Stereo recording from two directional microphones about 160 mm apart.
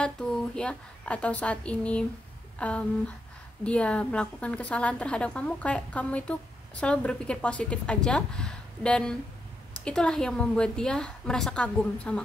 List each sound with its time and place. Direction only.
0.0 s a woman's voice: 5° left (ahead or behind)